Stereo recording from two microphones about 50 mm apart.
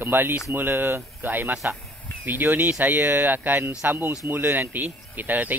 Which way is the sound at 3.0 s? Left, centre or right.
Right.